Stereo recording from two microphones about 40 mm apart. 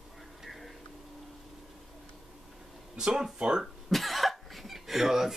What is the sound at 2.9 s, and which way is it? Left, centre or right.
Speech, centre.